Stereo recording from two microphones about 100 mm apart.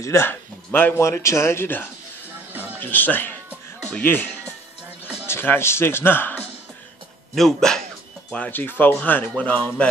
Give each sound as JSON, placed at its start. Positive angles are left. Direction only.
{"t": 0.0, "sound": "a man's voice", "side_deg": 25}
{"t": 0.9, "sound": "speech", "side_deg": 30}
{"t": 2.5, "sound": "music", "side_deg": -20}
{"t": 2.8, "sound": "speech", "side_deg": 20}
{"t": 7.3, "sound": "speech", "side_deg": 5}
{"t": 8.3, "sound": "speech", "side_deg": 15}